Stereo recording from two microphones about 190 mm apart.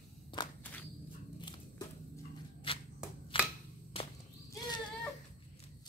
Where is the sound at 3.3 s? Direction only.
30° left (ahead or behind).